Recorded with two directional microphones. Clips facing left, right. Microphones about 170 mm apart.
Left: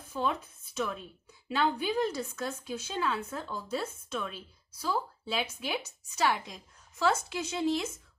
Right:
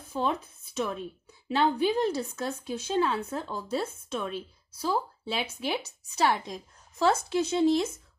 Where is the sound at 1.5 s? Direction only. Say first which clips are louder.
Right 5 dB; 35° right (ahead or behind).